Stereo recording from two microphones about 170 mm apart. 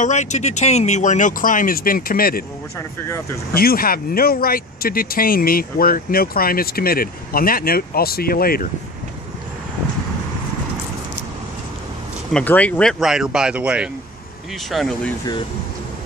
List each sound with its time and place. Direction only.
0.0 s speech: 45° left (ahead or behind); by 2.4 s 60° left (ahead or behind)
3.5 s speech: 60° left (ahead or behind)
12.3 s speech: 5° left (ahead or behind)